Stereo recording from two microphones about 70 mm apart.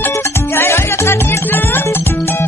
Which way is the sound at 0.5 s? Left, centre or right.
Left.